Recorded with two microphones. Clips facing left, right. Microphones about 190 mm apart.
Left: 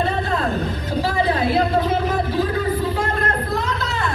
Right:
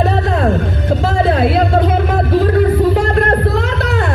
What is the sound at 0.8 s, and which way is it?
Music, 70° right (ahead or behind).